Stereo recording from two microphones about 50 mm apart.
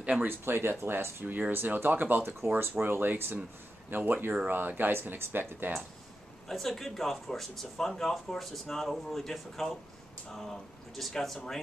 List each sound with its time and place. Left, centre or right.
0.3 s speech: right
6.5 s speech: centre